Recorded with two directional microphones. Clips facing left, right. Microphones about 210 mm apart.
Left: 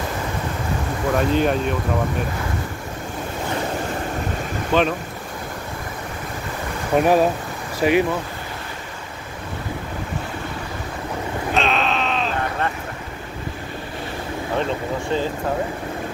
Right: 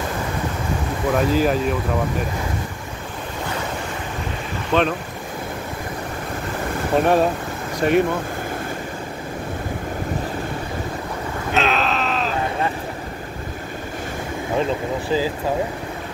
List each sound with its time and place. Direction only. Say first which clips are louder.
1.1 s speech: even; 5° right (ahead or behind)
4.7 s speech: even; centre (ahead or behind)
6.9 s speech: left 1 dB; 5° left (ahead or behind)
11.5 s a sound: right 1 dB; centre (ahead or behind)
15.0 s speech: right 2 dB; 5° right (ahead or behind)